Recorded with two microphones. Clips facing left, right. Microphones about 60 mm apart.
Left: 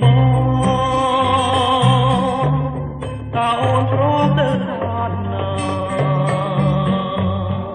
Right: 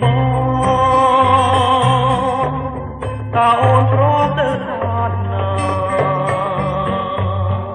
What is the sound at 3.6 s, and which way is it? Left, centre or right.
Music, centre.